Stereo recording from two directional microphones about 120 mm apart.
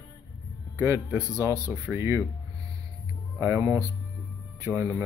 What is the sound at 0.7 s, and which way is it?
Speech, 20° right (ahead or behind).